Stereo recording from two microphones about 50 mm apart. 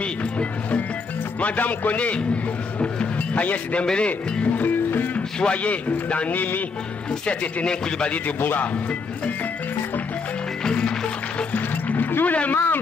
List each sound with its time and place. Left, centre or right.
0.0 s music: left
1.4 s a man's voice: left
2.8 s music: left
3.8 s a man's voice: left
4.6 s music: left
5.4 s a man's voice: left
7.2 s a man's voice: left
8.4 s a man's voice: left
10.6 s music: centre
11.5 s a sound: left
12.5 s a man's voice: left